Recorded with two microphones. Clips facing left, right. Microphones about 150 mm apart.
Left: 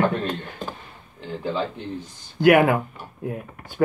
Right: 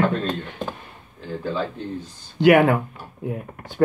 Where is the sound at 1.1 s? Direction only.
20° left (ahead or behind).